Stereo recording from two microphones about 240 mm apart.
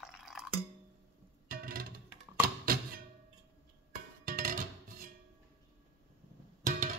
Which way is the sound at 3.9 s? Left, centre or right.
Right.